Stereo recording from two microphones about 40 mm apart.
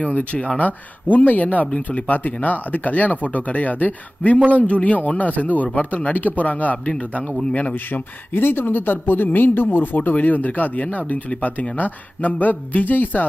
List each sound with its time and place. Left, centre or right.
0.0 s speech: left
0.6 s speech: left
7.9 s speech: left
10.1 s speech: left